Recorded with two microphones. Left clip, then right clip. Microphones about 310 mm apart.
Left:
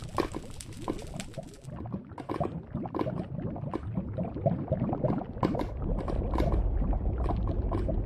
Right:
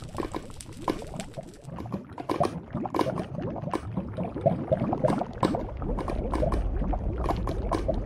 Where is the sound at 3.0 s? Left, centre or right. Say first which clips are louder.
Right 6 dB; right.